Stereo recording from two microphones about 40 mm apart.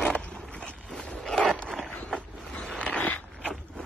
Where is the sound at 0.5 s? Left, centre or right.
Left.